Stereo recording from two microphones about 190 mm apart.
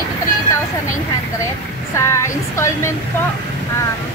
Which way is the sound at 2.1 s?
15° left (ahead or behind).